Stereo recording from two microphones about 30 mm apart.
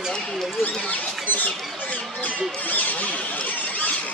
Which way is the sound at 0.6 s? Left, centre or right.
Left.